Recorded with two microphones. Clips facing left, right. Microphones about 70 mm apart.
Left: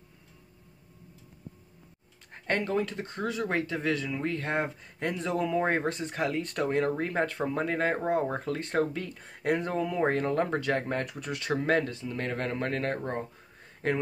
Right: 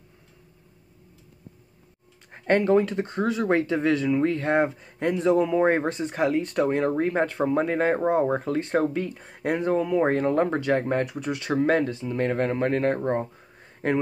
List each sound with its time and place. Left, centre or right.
2.3 s speech: right